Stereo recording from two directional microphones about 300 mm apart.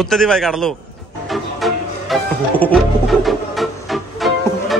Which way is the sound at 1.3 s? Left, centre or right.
Centre.